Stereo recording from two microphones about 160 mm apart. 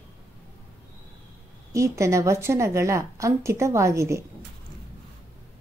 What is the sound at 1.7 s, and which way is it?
A woman's voice, 20° right (ahead or behind).